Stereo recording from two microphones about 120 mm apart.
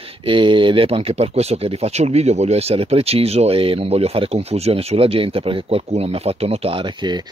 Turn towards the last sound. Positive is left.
turn(degrees=-60)  # may be behind; listen again after turning